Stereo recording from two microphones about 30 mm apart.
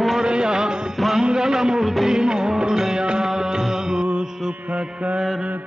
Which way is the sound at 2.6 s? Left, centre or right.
Right.